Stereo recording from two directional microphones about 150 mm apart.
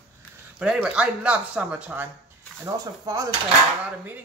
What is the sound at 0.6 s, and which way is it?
Speech, 5° right (ahead or behind).